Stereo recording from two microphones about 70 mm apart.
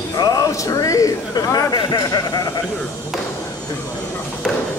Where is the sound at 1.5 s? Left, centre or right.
Left.